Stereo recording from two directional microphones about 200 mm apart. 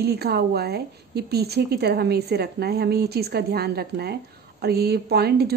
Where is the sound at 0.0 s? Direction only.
55° right (ahead or behind).